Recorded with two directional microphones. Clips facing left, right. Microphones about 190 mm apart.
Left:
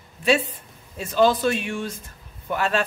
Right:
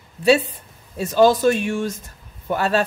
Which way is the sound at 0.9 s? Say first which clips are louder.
Right 4 dB; 40° right (ahead or behind).